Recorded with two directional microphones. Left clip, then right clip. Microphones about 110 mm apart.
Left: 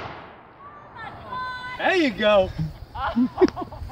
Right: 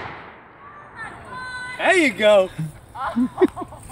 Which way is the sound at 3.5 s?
10° right (ahead or behind).